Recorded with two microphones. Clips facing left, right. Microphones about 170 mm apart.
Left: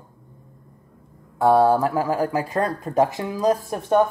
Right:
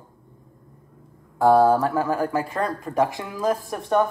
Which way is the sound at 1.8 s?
10° left (ahead or behind).